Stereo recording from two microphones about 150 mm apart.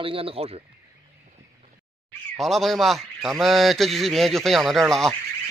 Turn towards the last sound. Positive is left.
turn(degrees=0)  # may be behind; listen again after turning